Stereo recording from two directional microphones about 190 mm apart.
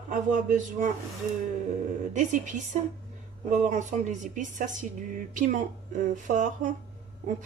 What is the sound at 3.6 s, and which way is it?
A woman's voice, 40° right (ahead or behind).